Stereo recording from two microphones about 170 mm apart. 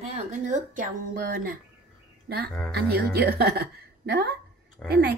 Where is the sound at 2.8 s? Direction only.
70° right (ahead or behind).